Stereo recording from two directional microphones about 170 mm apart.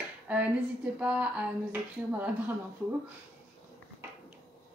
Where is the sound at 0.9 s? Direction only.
5° right (ahead or behind).